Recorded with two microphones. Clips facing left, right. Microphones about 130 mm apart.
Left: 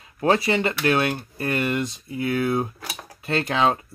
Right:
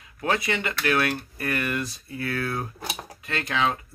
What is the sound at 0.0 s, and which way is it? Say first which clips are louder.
Speech: left 6 dB; 30° left (ahead or behind).